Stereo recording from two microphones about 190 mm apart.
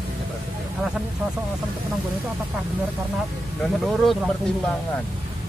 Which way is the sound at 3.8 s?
Centre (ahead or behind).